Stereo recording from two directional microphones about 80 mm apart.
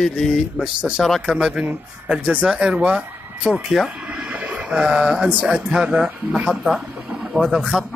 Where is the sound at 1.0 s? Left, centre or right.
Centre.